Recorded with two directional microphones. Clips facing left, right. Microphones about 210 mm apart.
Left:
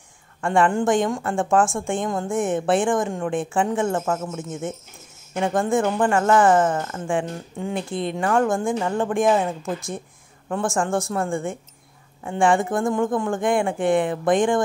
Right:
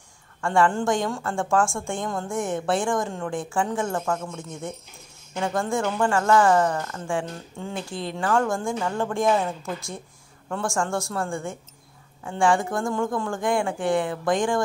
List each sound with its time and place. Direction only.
0.4 s a woman's voice: 20° left (ahead or behind)